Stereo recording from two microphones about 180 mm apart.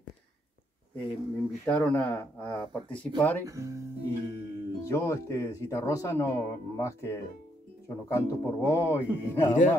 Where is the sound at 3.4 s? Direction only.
15° right (ahead or behind).